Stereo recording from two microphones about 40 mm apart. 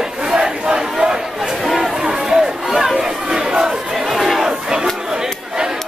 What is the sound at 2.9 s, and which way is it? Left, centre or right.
Chatter, centre.